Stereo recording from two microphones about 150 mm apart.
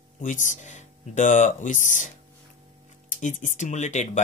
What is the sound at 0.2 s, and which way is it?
Speech, 55° left (ahead or behind).